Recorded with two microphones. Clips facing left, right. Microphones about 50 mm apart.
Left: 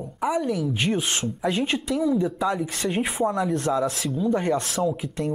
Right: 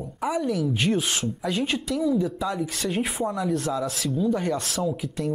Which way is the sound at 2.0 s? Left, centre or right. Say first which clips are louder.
Left 1 dB; centre.